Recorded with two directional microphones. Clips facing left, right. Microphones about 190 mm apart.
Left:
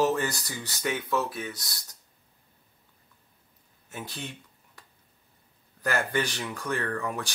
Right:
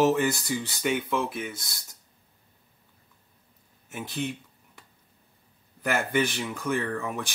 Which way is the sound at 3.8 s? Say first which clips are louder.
Right 6 dB; 10° right (ahead or behind).